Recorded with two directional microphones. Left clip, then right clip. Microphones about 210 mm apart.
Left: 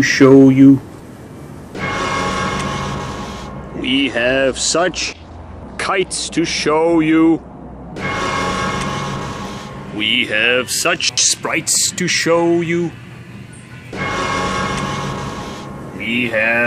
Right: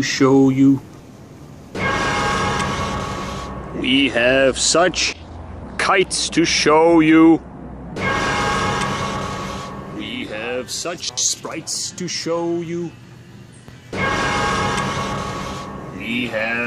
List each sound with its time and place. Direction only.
0.0 s speech: centre (ahead or behind)
1.7 s music: centre (ahead or behind)
5.8 s speech: centre (ahead or behind)
7.9 s a sound: centre (ahead or behind)
14.1 s train: centre (ahead or behind)
16.1 s speech: 15° right (ahead or behind)